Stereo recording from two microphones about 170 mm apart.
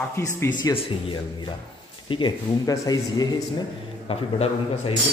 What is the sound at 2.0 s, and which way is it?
Speech, 30° left (ahead or behind).